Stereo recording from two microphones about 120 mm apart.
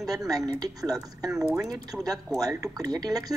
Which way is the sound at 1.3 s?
5° right (ahead or behind).